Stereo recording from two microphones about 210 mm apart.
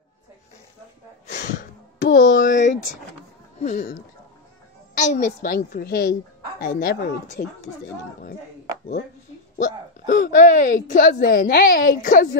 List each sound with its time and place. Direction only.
1.2 s a sound: 40° left (ahead or behind)
3.5 s speech: 35° left (ahead or behind)
9.6 s speech: 40° left (ahead or behind)